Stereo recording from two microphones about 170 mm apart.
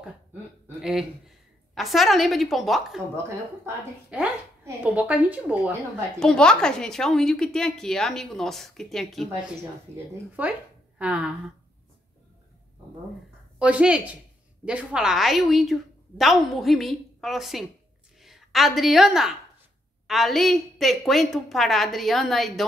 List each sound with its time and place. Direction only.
0.7 s a woman's voice: 5° right (ahead or behind)
3.6 s a woman's voice: 10° right (ahead or behind)
6.1 s a woman's voice: 5° left (ahead or behind)
10.4 s a woman's voice: 10° right (ahead or behind)
13.6 s a woman's voice: 5° right (ahead or behind)